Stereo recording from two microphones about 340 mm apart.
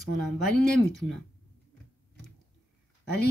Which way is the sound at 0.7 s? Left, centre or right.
Centre.